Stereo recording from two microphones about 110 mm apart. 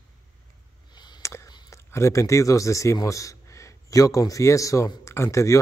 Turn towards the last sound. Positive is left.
turn(degrees=30)  # may be behind; listen again after turning